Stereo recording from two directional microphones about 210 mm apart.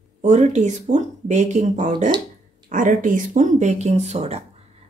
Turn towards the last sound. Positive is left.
turn(degrees=-30)  # may be behind; listen again after turning